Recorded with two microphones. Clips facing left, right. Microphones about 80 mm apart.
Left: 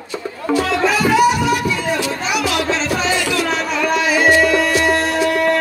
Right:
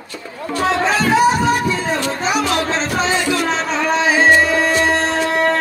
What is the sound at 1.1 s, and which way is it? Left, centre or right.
Music, right.